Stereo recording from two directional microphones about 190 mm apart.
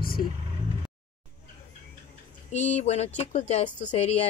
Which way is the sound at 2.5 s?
35° left (ahead or behind).